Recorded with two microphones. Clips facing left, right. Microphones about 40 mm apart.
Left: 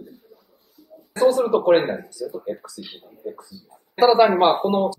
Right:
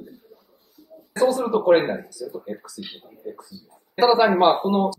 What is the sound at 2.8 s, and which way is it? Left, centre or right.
Speech, right.